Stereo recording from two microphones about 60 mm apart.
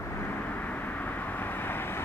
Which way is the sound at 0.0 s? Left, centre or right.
Left.